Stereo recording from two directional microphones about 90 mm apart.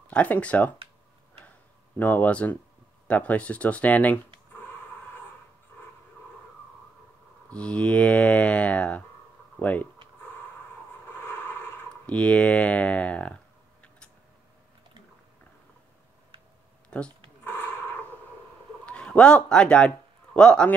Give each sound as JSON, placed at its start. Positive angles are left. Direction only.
{"t": 0.1, "sound": "speech", "side_deg": 15}
{"t": 2.0, "sound": "speech", "side_deg": 20}
{"t": 7.4, "sound": "speech", "side_deg": 10}
{"t": 12.1, "sound": "speech", "side_deg": 15}
{"t": 16.9, "sound": "speech", "side_deg": 10}
{"t": 18.9, "sound": "speech", "side_deg": 15}